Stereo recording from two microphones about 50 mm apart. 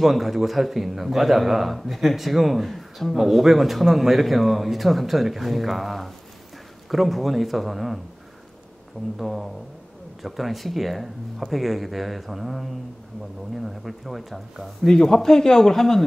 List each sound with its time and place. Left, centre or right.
0.0 s a man's voice: centre
9.2 s a man's voice: centre